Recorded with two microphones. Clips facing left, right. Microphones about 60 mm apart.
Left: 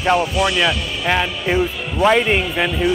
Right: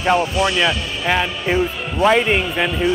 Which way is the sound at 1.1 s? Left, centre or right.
Centre.